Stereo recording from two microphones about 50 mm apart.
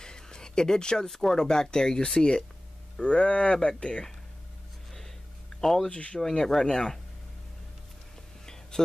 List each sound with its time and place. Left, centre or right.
0.0 s speech: centre
5.6 s speech: centre
5.9 s speech: centre
8.8 s speech: centre